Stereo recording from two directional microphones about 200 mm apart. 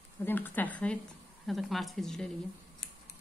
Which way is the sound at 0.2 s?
10° left (ahead or behind).